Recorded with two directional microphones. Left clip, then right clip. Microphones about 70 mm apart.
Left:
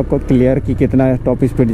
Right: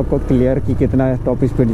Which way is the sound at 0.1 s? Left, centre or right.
Left.